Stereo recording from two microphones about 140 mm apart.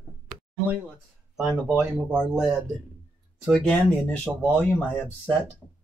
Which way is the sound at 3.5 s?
Centre (ahead or behind).